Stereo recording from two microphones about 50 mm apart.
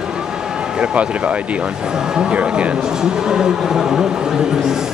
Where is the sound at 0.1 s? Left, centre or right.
Centre.